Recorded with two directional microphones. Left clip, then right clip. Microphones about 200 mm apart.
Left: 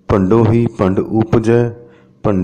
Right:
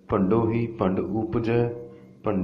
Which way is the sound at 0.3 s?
50° left (ahead or behind).